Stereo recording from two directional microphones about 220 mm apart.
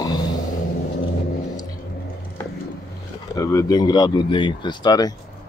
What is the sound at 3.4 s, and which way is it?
Speech, 15° left (ahead or behind).